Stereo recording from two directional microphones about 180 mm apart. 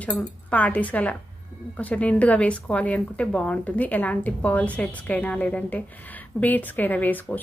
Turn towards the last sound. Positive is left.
turn(degrees=10)  # may be behind; listen again after turning